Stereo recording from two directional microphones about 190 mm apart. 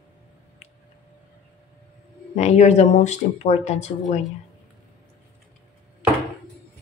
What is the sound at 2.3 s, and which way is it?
Speech, 35° left (ahead or behind).